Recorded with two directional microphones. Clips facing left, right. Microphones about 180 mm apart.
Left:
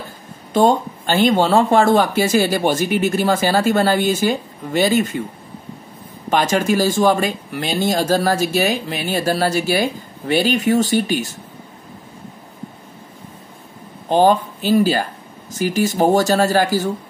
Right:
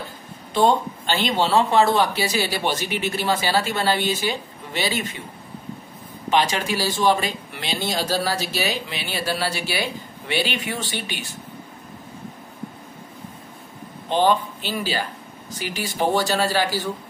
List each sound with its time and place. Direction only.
0.5 s speech: 45° left (ahead or behind)
6.3 s speech: 45° left (ahead or behind)
14.0 s speech: 45° left (ahead or behind)